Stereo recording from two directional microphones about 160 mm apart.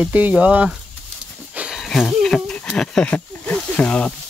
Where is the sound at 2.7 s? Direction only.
5° left (ahead or behind).